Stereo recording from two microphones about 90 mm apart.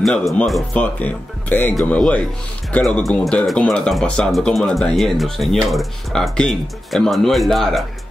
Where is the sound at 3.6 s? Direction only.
5° left (ahead or behind).